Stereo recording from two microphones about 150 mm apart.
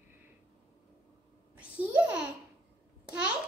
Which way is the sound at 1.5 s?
10° right (ahead or behind).